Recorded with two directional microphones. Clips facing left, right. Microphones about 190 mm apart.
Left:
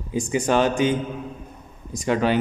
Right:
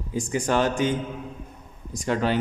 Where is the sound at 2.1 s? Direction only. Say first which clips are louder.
Left 3 dB; 15° left (ahead or behind).